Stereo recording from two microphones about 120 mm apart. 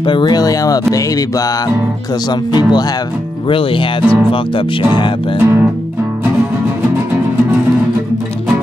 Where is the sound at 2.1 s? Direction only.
35° left (ahead or behind).